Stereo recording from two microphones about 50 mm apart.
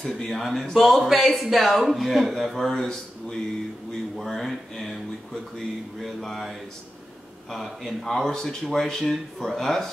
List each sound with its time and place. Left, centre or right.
0.0 s speech: centre
4.2 s speech: centre
5.9 s speech: centre
7.5 s speech: centre